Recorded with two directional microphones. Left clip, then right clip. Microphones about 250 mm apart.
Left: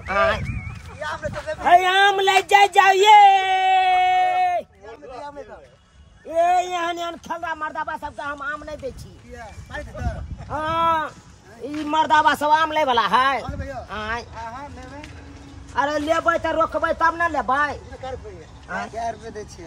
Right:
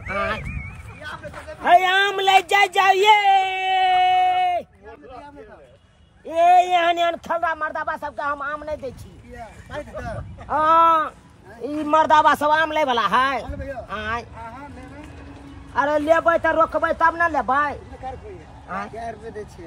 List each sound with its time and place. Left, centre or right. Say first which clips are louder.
0.1 s a sound: left 5 dB; centre
1.0 s speech: left 7 dB; left
1.6 s speech: left 1 dB; centre
6.3 s speech: right 4 dB; right
7.2 s speech: right 4 dB; centre
15.7 s speech: right 3 dB; centre
18.9 s speech: left 3 dB; left